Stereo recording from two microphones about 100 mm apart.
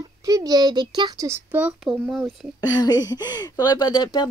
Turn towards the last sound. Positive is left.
turn(degrees=45)  # may be behind; listen again after turning